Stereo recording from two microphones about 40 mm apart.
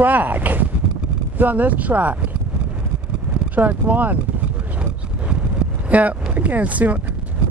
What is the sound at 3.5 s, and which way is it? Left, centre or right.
Speech, right.